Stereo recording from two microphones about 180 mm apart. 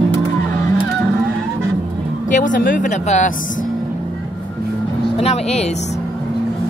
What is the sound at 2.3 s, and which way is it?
Speech, 45° left (ahead or behind).